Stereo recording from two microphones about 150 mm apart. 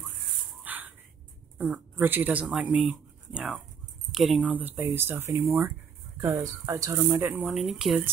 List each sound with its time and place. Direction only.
0.7 s a sound: 10° right (ahead or behind)
1.6 s speech: 10° right (ahead or behind)
7.2 s speech: 10° right (ahead or behind)